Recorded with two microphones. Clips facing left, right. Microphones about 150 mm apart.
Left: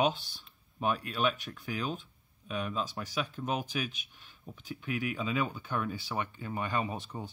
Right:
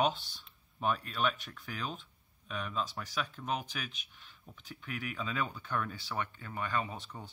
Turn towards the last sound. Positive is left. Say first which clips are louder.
# left 3 dB
turn(degrees=15)  # may be behind; listen again after turning